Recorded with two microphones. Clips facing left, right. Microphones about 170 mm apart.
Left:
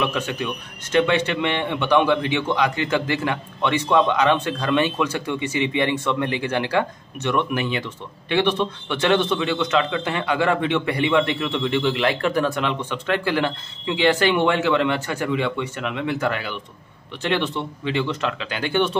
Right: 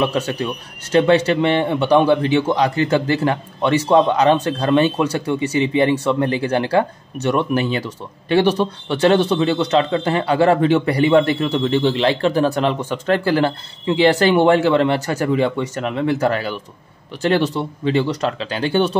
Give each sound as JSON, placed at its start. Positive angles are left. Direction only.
{"t": 0.0, "sound": "a man's voice", "side_deg": -35}